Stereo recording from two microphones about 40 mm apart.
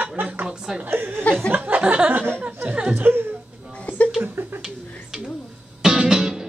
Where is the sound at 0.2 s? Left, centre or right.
Right.